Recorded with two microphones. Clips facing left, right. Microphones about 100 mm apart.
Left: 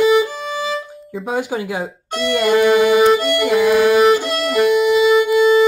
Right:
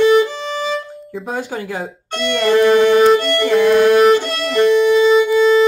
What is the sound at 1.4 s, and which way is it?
Music, 15° left (ahead or behind).